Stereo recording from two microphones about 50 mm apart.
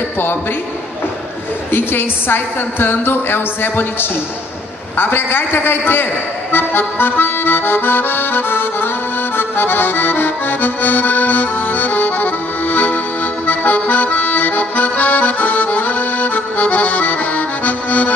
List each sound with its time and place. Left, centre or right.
1.7 s a woman's voice: left
6.5 s accordion: left